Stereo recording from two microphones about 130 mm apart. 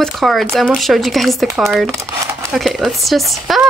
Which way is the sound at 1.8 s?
20° right (ahead or behind).